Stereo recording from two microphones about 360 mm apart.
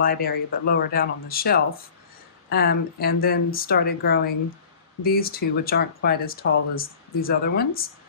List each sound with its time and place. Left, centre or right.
0.0 s speech: left